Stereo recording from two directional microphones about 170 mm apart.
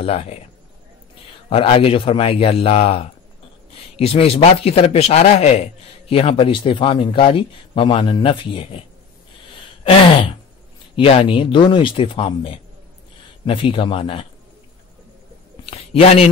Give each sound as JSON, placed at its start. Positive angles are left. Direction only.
{"t": 0.0, "sound": "a man's voice", "side_deg": 35}
{"t": 1.5, "sound": "a man's voice", "side_deg": 35}
{"t": 11.0, "sound": "a man's voice", "side_deg": 35}
{"t": 15.6, "sound": "a man's voice", "side_deg": 35}